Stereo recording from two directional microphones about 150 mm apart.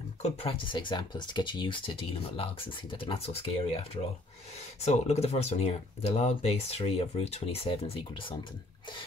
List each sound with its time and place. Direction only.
0.2 s speech: 40° left (ahead or behind)